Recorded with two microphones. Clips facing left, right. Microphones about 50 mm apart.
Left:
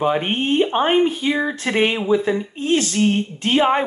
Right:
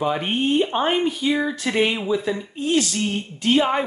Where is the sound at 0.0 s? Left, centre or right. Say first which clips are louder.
Left 2 dB; left.